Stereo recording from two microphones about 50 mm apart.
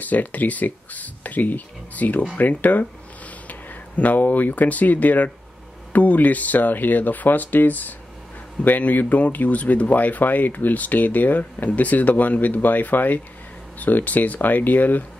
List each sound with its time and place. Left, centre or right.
0.0 s speech: left